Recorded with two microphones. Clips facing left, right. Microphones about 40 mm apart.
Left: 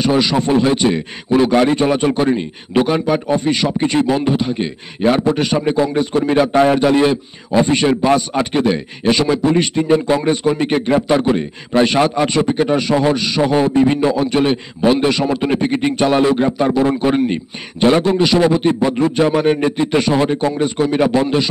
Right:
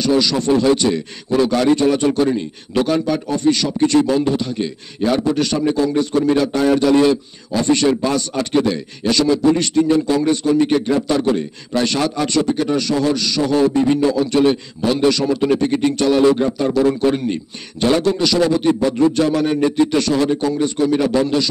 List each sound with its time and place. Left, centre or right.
0.0 s speech: left